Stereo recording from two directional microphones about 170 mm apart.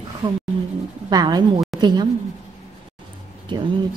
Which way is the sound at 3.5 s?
25° right (ahead or behind).